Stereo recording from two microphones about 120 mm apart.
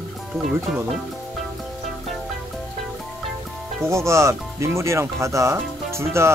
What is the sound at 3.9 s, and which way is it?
Speech, 25° right (ahead or behind).